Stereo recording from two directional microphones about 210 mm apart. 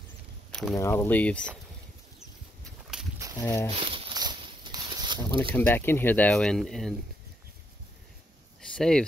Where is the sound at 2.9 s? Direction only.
Centre (ahead or behind).